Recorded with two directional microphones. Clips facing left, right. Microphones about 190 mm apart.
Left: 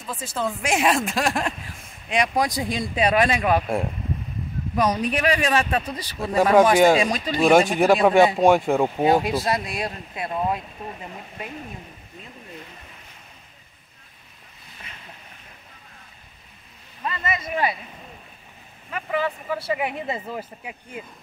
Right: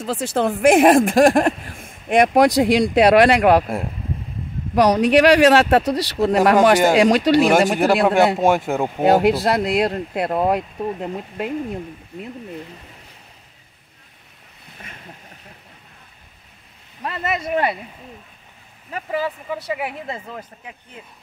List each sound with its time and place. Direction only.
0.0 s speech: 75° right (ahead or behind)
4.7 s speech: 75° right (ahead or behind)
7.8 s speech: centre (ahead or behind)
9.0 s speech: 70° right (ahead or behind)
17.0 s speech: 65° right (ahead or behind)
18.9 s speech: 35° right (ahead or behind)
19.5 s speech: 15° right (ahead or behind)
19.8 s speech: centre (ahead or behind)
20.2 s speech: 10° left (ahead or behind)